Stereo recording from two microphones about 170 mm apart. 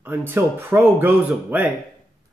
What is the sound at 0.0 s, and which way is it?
Speech, 15° right (ahead or behind).